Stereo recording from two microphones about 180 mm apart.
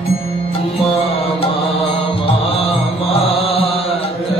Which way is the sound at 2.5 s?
30° left (ahead or behind).